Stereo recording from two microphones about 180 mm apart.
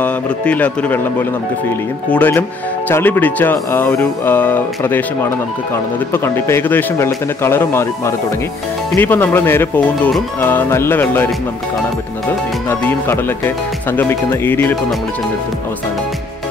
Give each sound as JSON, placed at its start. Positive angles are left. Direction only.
{"t": 0.0, "sound": "speech", "side_deg": 10}
{"t": 2.0, "sound": "speech", "side_deg": 10}
{"t": 12.6, "sound": "speech", "side_deg": 10}